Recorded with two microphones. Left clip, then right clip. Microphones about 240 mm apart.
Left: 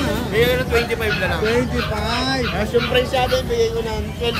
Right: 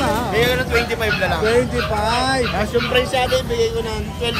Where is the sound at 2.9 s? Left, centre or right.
Right.